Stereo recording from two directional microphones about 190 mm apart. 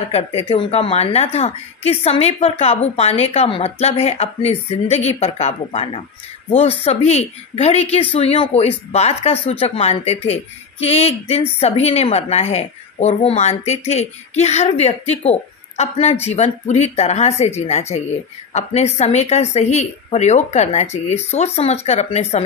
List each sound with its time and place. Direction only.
0.1 s a woman's voice: 30° left (ahead or behind)